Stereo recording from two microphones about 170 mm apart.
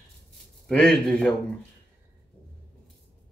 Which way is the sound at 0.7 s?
5° left (ahead or behind).